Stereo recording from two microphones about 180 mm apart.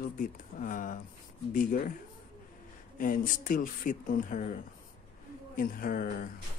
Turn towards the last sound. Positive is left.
turn(degrees=50)  # may be behind; listen again after turning